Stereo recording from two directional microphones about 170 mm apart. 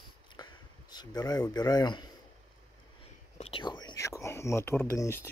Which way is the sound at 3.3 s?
35° left (ahead or behind).